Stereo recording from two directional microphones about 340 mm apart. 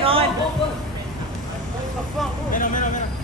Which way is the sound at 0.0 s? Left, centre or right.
Centre.